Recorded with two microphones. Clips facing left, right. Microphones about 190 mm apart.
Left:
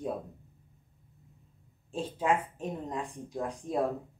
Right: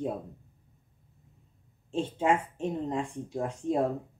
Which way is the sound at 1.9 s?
25° right (ahead or behind).